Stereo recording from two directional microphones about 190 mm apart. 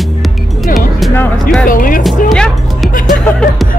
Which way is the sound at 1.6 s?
45° left (ahead or behind).